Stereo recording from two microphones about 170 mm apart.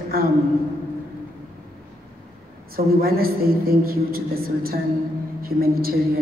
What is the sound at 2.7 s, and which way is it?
A woman's voice, 60° right (ahead or behind).